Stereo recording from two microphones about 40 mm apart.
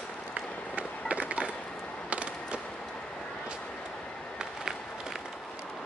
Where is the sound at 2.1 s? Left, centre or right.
Right.